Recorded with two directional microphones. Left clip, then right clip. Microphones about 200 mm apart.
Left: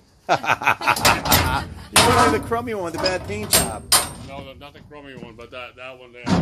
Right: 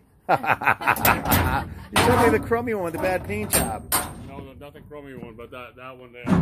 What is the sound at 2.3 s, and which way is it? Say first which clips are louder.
Speech: even; 10° right (ahead or behind).